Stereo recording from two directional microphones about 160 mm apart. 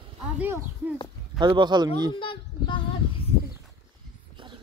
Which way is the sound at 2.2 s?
30° left (ahead or behind).